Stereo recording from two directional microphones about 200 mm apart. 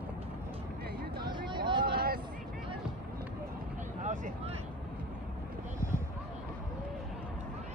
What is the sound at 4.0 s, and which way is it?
Vehicle, 40° right (ahead or behind).